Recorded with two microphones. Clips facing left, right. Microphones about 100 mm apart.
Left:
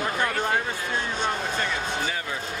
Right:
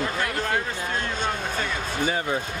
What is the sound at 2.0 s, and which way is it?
Speech, 30° right (ahead or behind).